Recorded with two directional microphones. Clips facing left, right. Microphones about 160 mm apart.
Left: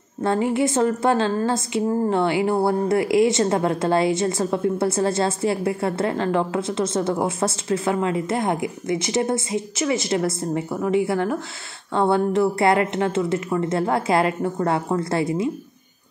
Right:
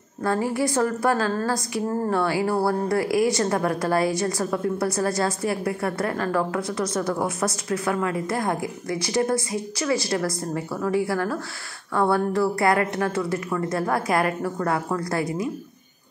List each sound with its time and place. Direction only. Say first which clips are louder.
0.2 s a woman's voice: left 3 dB; 25° left (ahead or behind)